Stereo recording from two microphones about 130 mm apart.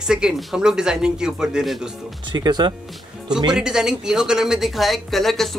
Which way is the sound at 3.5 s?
5° right (ahead or behind).